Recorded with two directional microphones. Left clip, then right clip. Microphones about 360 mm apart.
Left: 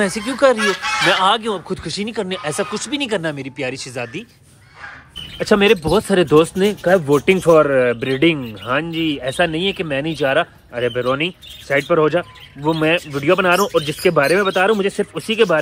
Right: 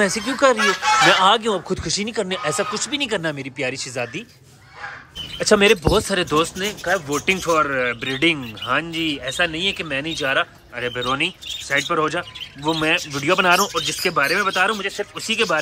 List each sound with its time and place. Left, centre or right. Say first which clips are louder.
0.0 s speech: left 2 dB; centre
0.6 s speech: right 2 dB; right
1.0 s speech: left 1 dB; centre
5.4 s speech: left 1 dB; centre